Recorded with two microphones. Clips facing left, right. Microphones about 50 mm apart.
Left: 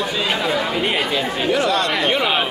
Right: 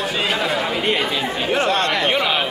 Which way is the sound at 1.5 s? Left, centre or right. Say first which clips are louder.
Even; right.